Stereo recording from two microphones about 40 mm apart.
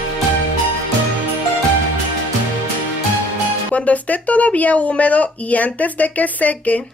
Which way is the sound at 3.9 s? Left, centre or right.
Left.